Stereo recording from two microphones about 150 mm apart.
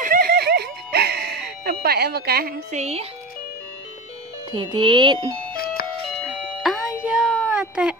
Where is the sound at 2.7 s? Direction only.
45° right (ahead or behind).